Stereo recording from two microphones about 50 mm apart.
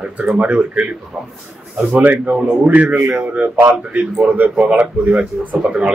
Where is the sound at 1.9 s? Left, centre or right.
Right.